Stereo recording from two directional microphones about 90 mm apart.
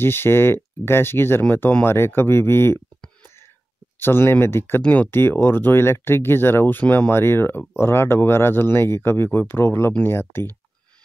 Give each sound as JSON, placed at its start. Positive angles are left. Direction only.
{"t": 0.0, "sound": "speech", "side_deg": 25}
{"t": 4.0, "sound": "speech", "side_deg": 25}